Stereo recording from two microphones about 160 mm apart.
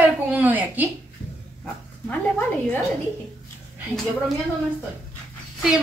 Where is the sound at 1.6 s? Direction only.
10° left (ahead or behind).